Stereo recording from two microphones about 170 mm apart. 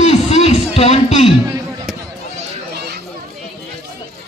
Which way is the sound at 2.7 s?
70° right (ahead or behind).